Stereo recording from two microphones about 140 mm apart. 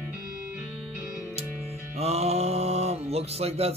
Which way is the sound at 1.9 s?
50° right (ahead or behind).